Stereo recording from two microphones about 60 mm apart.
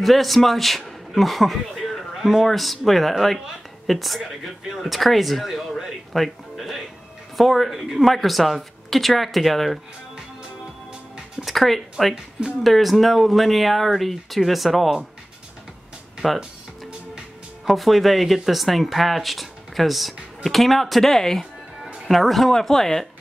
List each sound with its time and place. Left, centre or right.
0.0 s speech: centre
11.4 s speech: centre
16.2 s speech: centre
17.6 s speech: centre